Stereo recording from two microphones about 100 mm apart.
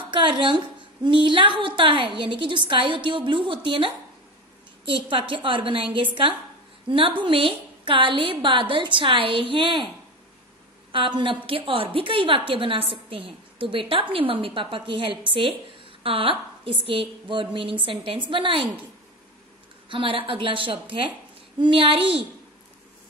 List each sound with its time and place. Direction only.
0.1 s a woman's voice: 55° right (ahead or behind)
10.9 s a woman's voice: 55° right (ahead or behind)
19.9 s a woman's voice: 60° right (ahead or behind)